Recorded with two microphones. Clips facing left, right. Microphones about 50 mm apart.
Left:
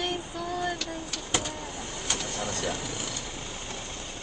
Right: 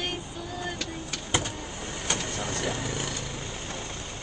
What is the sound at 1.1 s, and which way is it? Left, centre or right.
Speech, right.